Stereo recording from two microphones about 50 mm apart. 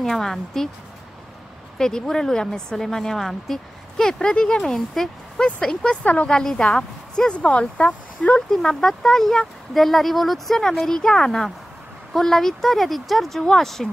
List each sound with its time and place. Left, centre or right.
0.0 s a woman's voice: centre
1.8 s a woman's voice: centre
7.3 s speech: left
8.4 s a woman's voice: centre